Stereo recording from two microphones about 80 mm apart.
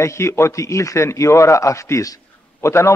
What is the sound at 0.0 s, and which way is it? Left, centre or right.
A man's voice, left.